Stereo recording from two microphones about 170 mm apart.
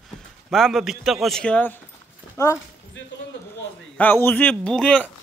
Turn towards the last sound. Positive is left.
turn(degrees=5)  # may be behind; listen again after turning